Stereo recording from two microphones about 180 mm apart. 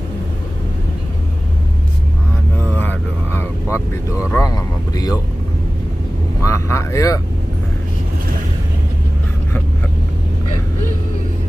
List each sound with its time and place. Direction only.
2.7 s vehicle: 10° left (ahead or behind)
6.4 s speech: 15° left (ahead or behind)